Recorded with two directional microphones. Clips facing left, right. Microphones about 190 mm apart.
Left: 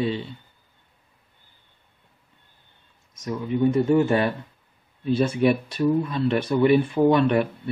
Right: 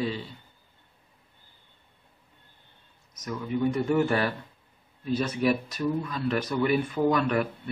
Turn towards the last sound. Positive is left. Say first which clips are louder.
# left 6 dB
turn(degrees=25)  # may be behind; listen again after turning